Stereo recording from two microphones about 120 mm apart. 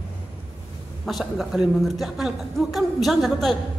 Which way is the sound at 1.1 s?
Centre (ahead or behind).